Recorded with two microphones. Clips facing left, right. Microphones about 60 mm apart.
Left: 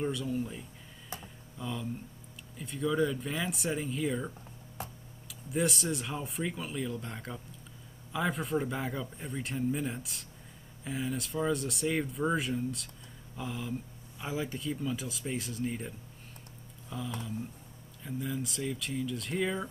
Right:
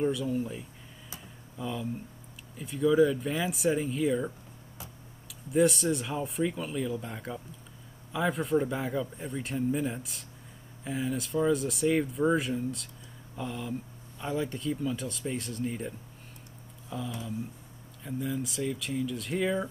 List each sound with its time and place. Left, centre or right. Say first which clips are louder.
0.0 s speech: right 4 dB; centre
4.8 s tick-tock: left 6 dB; left
5.3 s speech: right 7 dB; centre
16.9 s speech: right 2 dB; centre